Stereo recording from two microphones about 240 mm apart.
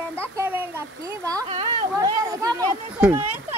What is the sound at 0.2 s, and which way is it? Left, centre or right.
Speech, centre.